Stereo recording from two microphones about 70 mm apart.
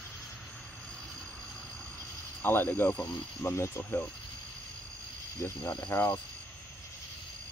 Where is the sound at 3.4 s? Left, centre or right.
Left.